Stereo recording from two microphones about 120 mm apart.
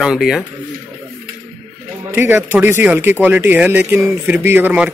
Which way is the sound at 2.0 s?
15° right (ahead or behind).